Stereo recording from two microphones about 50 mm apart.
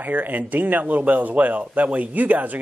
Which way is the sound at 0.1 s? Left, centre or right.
Right.